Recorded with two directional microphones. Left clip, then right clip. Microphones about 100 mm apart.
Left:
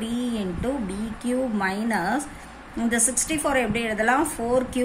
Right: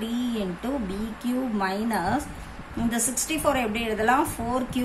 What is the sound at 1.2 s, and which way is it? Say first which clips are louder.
A woman's voice: left 3 dB; 40° left (ahead or behind).